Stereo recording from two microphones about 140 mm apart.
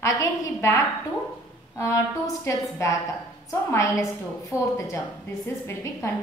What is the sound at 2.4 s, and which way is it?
A woman's voice, 20° left (ahead or behind).